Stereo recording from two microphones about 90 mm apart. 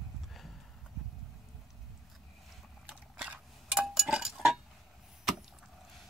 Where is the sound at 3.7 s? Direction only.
5° right (ahead or behind).